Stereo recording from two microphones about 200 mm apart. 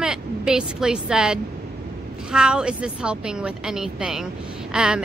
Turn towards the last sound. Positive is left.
turn(degrees=-5)  # may be behind; listen again after turning